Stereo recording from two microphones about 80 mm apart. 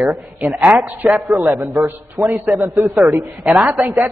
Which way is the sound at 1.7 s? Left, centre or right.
Right.